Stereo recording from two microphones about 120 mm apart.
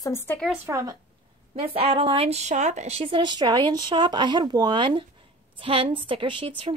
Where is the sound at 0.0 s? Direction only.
20° left (ahead or behind).